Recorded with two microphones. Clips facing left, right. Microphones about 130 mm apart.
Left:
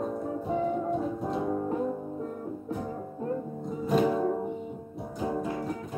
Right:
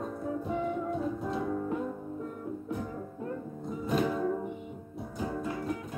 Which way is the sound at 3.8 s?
35° left (ahead or behind).